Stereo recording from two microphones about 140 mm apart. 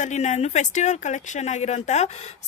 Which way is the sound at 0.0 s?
60° left (ahead or behind).